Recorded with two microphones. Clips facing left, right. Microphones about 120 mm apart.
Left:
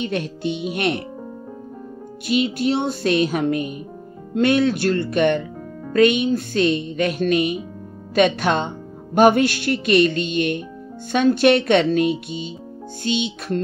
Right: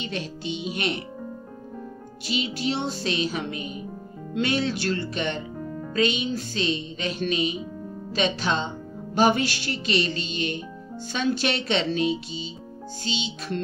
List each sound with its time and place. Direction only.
0.0 s speech: 55° left (ahead or behind)
2.2 s a child's voice: 50° left (ahead or behind)